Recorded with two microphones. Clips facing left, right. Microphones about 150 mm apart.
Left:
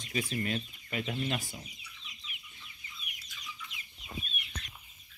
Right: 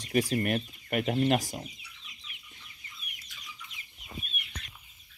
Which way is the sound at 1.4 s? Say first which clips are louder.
Right 7 dB; 90° right.